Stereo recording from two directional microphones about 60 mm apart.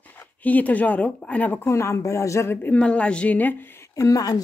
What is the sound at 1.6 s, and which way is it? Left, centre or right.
Speech, left.